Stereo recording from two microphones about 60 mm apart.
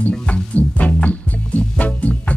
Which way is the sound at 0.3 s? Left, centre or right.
Left.